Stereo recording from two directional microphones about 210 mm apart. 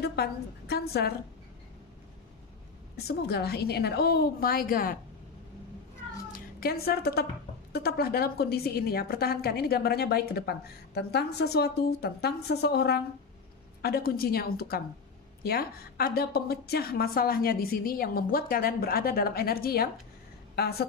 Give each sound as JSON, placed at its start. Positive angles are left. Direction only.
{"t": 0.0, "sound": "a woman's voice", "side_deg": 50}
{"t": 3.1, "sound": "a woman's voice", "side_deg": 50}
{"t": 6.3, "sound": "a woman's voice", "side_deg": 45}